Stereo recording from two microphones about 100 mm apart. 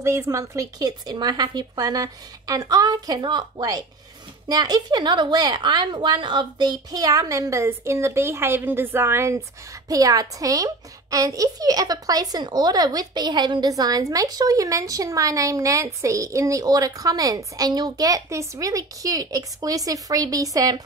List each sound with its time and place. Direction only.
0.0 s a woman's voice: 30° right (ahead or behind)